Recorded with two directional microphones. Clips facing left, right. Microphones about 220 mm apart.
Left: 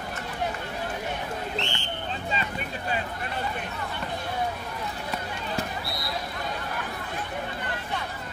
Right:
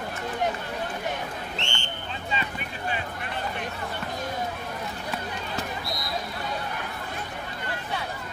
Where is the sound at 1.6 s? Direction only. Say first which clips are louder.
Left 2 dB; 35° left (ahead or behind).